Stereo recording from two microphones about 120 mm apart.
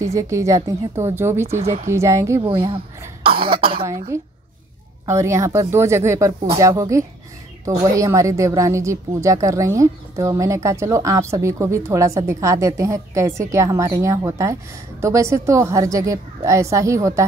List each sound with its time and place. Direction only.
0.0 s a woman's voice: 25° right (ahead or behind)
1.6 s a woman's voice: 75° right (ahead or behind)
1.9 s a woman's voice: 25° right (ahead or behind)
3.3 s speech: 50° right (ahead or behind)
5.0 s a woman's voice: 25° right (ahead or behind)